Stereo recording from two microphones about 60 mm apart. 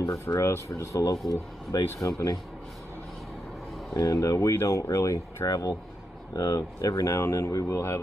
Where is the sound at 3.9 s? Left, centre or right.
Left.